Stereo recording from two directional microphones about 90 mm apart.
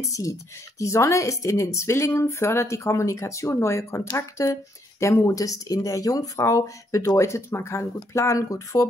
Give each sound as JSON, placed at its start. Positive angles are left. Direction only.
{"t": 0.1, "sound": "speech", "side_deg": 35}